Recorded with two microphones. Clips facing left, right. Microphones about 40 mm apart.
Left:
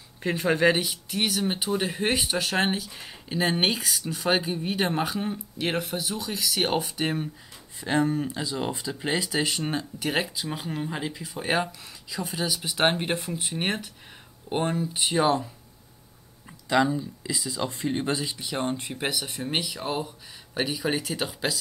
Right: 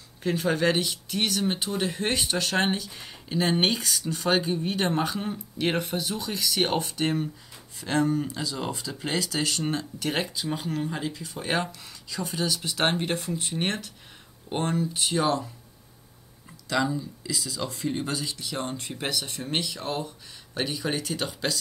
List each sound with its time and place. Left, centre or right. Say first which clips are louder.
0.2 s speech: left 2 dB; centre
16.6 s speech: left 3 dB; left